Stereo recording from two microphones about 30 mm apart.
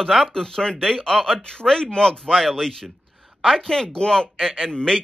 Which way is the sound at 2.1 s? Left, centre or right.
Centre.